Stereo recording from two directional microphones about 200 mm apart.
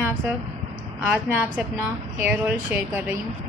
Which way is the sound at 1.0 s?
5° right (ahead or behind).